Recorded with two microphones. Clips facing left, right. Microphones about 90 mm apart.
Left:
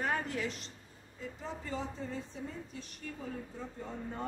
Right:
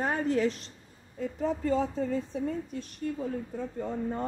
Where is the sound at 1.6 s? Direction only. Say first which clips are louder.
Right 11 dB; 55° right (ahead or behind).